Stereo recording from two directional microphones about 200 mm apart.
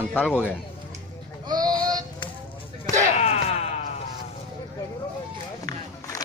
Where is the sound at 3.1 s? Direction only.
35° left (ahead or behind).